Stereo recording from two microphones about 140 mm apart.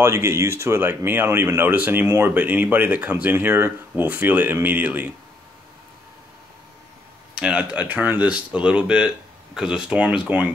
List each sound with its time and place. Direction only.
0.0 s speech: 20° right (ahead or behind)
7.3 s speech: 5° right (ahead or behind)